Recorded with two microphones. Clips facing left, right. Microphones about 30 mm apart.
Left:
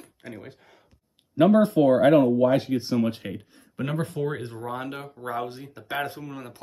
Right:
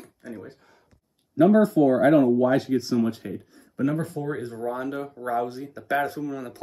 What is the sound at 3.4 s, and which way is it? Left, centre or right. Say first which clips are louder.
Speech: right 5 dB; left.